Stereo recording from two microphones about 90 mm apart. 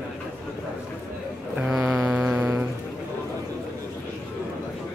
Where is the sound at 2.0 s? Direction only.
20° right (ahead or behind).